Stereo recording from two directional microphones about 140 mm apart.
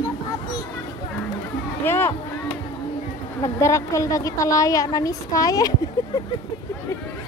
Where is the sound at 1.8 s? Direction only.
15° left (ahead or behind).